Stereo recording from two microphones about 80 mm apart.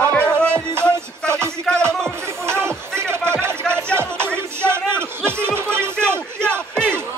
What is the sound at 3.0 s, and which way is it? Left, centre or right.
Music, right.